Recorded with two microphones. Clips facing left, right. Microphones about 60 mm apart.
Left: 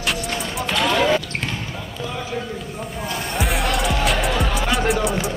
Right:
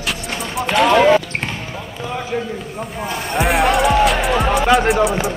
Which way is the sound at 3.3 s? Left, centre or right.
Right.